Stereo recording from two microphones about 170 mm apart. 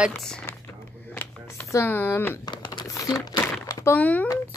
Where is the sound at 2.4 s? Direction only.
25° left (ahead or behind); by 4.2 s 10° left (ahead or behind).